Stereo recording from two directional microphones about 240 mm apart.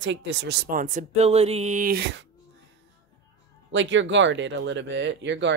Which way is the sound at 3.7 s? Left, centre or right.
Right.